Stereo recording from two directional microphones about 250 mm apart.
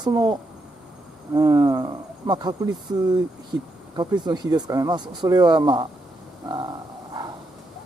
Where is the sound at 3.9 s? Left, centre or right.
Centre.